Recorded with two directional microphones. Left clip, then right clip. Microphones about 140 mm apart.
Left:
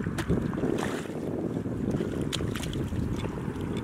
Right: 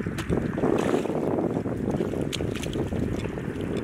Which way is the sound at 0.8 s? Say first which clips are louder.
Right 7 dB; centre (ahead or behind).